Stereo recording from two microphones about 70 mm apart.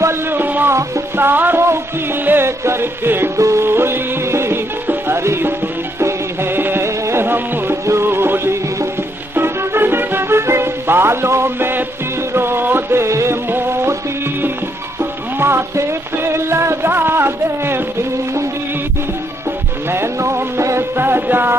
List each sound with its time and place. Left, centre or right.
0.3 s music: right
0.7 s music: right
3.3 s music: right
15.3 s music: right
19.9 s music: right